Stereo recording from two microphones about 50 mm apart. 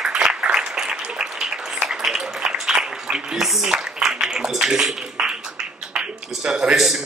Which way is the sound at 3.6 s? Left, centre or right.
Centre.